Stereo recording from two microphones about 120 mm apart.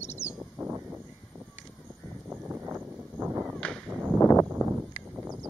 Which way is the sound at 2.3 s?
15° right (ahead or behind).